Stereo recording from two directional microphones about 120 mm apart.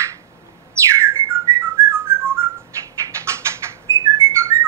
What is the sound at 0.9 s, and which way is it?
Whistling, 25° right (ahead or behind).